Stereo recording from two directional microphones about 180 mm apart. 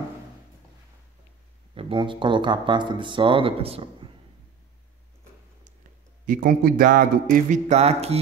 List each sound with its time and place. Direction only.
1.8 s speech: 30° right (ahead or behind)
6.2 s speech: 50° right (ahead or behind); by 8.2 s 35° right (ahead or behind)